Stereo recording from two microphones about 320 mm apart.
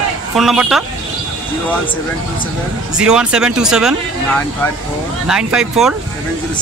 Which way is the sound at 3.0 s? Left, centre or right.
Centre.